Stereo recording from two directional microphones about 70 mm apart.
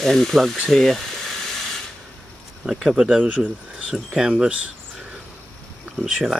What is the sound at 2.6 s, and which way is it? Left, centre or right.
Speech, centre.